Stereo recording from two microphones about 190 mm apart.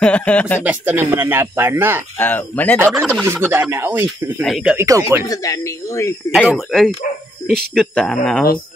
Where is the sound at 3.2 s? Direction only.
10° right (ahead or behind).